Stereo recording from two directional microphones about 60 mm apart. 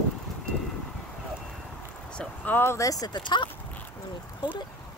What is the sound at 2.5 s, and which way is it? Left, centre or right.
Speech, left.